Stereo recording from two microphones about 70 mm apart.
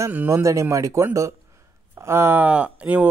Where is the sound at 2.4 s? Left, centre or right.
Centre.